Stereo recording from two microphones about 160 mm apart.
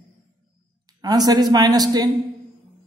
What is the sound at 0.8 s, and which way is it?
A woman's voice, 25° right (ahead or behind).